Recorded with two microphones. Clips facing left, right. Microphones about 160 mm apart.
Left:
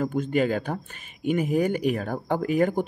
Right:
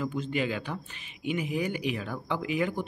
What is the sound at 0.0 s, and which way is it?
Speech, 50° left (ahead or behind).